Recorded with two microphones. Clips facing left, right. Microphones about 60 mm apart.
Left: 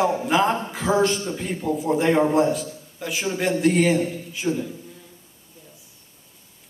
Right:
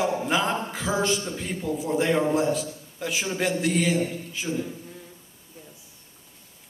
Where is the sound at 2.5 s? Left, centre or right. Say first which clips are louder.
Left 1 dB; centre.